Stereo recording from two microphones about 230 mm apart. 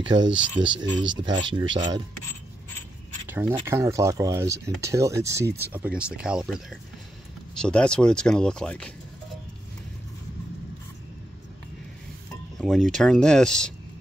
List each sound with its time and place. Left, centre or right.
0.1 s speech: right
0.6 s speech: centre
3.3 s a sound: centre
3.5 s speech: centre
12.5 s music: centre
12.9 s speech: centre